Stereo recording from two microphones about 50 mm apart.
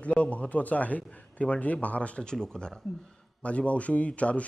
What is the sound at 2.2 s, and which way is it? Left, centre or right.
Speech, centre.